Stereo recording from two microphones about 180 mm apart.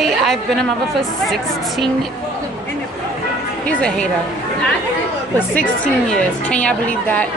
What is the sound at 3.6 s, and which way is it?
Speech, 5° left (ahead or behind).